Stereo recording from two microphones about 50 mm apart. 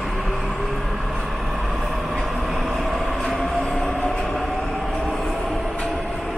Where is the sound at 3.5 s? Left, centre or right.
Centre.